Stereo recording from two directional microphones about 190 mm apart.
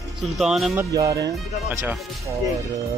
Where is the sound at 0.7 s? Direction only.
15° right (ahead or behind).